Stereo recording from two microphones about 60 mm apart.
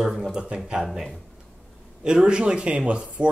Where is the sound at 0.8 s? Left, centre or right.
Centre.